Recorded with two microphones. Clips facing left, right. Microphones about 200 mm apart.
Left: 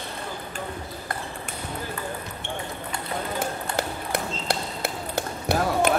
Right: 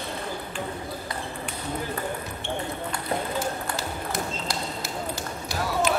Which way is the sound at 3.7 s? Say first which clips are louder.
Left 2 dB; 60° left (ahead or behind).